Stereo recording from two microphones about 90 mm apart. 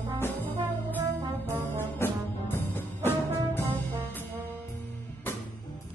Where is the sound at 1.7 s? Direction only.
25° left (ahead or behind).